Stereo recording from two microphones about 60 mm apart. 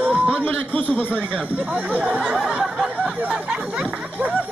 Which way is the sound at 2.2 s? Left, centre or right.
Centre.